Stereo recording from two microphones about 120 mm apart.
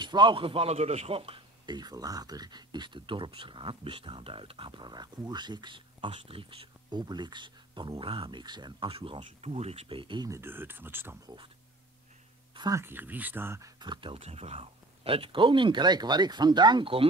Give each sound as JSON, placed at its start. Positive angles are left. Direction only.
{"t": 0.0, "sound": "speech", "side_deg": -40}
{"t": 1.7, "sound": "speech", "side_deg": -35}
{"t": 10.3, "sound": "speech", "side_deg": -20}
{"t": 11.2, "sound": "speech", "side_deg": -40}
{"t": 12.5, "sound": "a sound", "side_deg": -30}
{"t": 12.8, "sound": "speech", "side_deg": -15}
{"t": 13.7, "sound": "speech", "side_deg": -40}
{"t": 14.1, "sound": "speech", "side_deg": -60}